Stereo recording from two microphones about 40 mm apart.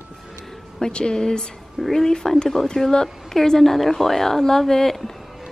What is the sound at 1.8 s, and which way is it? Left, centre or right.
Speech, centre.